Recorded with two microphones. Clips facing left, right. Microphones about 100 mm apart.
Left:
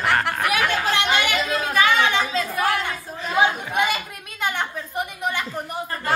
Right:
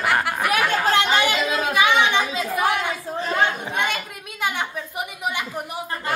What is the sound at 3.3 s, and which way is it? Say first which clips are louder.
A woman's voice: left 3 dB; 10° left (ahead or behind).